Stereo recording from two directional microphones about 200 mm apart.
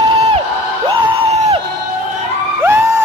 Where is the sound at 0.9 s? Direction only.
25° right (ahead or behind).